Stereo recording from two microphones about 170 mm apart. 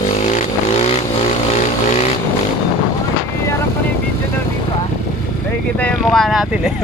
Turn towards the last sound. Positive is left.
turn(degrees=0)  # may be behind; listen again after turning